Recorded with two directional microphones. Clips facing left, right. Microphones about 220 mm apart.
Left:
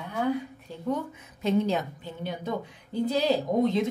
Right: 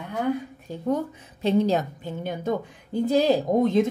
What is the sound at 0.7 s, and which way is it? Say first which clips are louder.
Speech: right 9 dB; 45° right (ahead or behind).